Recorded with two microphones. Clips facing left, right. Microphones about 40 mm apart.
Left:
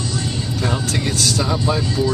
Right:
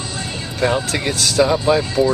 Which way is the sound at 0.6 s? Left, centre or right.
Right.